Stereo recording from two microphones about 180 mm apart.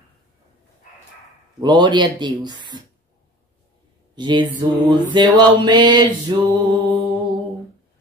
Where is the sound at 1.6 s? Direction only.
25° right (ahead or behind).